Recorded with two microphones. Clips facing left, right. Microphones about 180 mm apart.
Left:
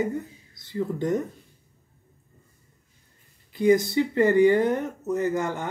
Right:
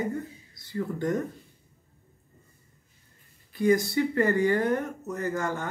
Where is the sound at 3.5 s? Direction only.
20° left (ahead or behind).